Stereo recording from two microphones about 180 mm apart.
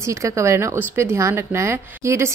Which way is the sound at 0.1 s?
15° right (ahead or behind).